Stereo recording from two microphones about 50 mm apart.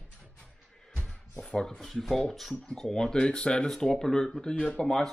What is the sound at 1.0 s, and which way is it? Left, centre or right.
Music, left.